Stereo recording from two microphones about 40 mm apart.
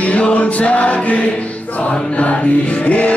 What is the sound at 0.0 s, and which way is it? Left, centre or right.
Music, left.